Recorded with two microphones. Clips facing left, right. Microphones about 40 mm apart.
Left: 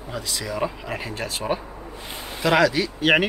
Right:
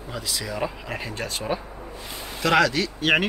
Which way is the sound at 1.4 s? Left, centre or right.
Centre.